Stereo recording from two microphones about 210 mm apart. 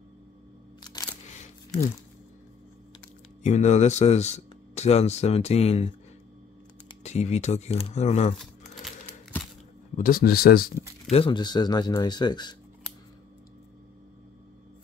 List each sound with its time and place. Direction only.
3.4 s speech: 35° left (ahead or behind)
7.0 s speech: 30° left (ahead or behind)
8.4 s a sound: centre (ahead or behind)
9.9 s speech: 45° left (ahead or behind)
11.1 s speech: 25° left (ahead or behind)